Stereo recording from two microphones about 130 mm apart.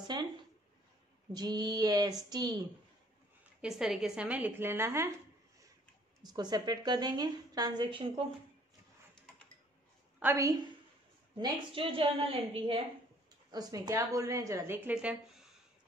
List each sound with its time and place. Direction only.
0.0 s a sound: 35° right (ahead or behind)
1.3 s a woman's voice: 30° right (ahead or behind)
3.6 s a woman's voice: 5° right (ahead or behind); by 5.1 s 20° right (ahead or behind)
6.2 s a woman's voice: 30° right (ahead or behind)
10.3 s speech: 30° right (ahead or behind)
11.3 s a woman's voice: 40° right (ahead or behind)
13.5 s speech: 30° right (ahead or behind)
15.0 s speech: 5° right (ahead or behind)